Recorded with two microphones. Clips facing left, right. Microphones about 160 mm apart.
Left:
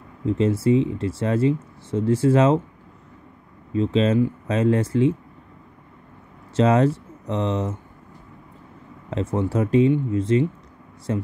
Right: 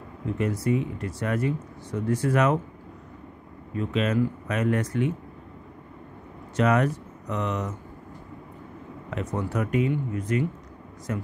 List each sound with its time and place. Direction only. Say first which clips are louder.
0.2 s speech: left 7 dB; 25° left (ahead or behind)
3.7 s speech: left 6 dB; 25° left (ahead or behind)
6.5 s speech: left 5 dB; 25° left (ahead or behind)
9.1 s speech: left 6 dB; 25° left (ahead or behind)